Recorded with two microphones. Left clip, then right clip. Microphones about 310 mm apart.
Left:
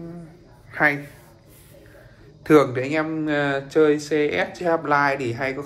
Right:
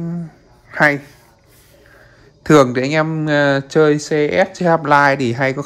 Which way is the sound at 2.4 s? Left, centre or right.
Right.